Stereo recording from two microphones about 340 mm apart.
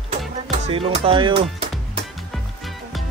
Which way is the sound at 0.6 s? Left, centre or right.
Centre.